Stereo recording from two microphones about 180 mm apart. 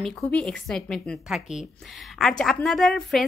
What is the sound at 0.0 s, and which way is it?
A woman's voice, 5° left (ahead or behind).